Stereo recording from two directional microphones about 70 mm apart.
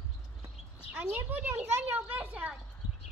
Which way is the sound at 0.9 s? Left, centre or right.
Right.